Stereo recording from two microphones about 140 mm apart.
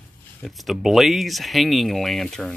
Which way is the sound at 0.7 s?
Centre (ahead or behind).